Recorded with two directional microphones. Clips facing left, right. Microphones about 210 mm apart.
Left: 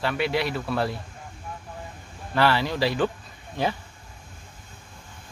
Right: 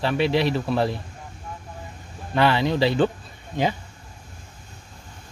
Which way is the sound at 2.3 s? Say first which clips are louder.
Right 3 dB; 20° right (ahead or behind).